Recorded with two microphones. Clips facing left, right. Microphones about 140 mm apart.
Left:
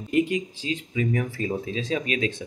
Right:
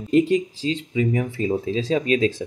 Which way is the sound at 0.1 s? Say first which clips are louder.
Right 5 dB; 35° right (ahead or behind).